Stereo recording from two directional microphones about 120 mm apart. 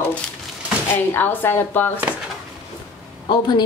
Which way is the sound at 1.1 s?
15° left (ahead or behind).